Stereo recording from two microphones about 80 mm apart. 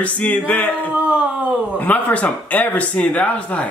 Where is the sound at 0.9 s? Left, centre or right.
Centre.